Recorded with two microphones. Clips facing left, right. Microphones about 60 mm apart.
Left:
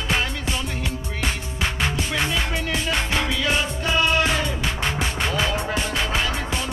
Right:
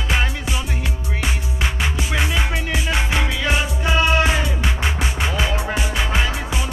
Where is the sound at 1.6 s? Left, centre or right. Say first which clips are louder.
Even; centre.